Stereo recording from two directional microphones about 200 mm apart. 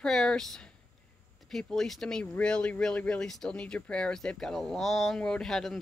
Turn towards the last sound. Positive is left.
turn(degrees=0)  # may be behind; listen again after turning